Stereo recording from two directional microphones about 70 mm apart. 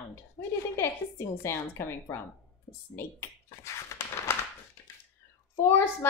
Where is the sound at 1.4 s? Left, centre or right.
Left.